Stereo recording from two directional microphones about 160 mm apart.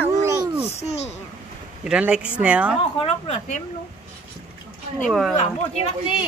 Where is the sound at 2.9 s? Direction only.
35° left (ahead or behind).